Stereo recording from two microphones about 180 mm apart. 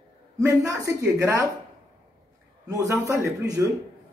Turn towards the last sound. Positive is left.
turn(degrees=-15)  # may be behind; listen again after turning